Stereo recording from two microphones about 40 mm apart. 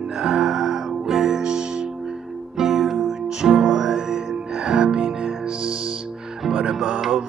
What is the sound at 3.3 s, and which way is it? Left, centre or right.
Music, centre.